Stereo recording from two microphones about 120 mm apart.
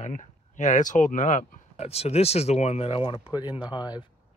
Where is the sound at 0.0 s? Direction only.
90° left; by 3.2 s 45° left (ahead or behind).